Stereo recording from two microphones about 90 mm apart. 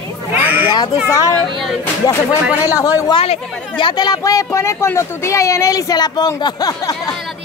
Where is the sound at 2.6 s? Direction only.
40° left (ahead or behind).